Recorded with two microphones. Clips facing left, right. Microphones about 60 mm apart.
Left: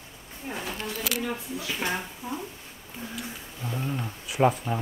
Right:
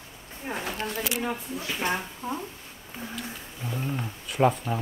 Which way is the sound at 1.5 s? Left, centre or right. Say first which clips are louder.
Right 1 dB; right.